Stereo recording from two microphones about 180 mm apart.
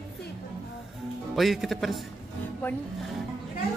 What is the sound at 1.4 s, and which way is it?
Speech, centre (ahead or behind).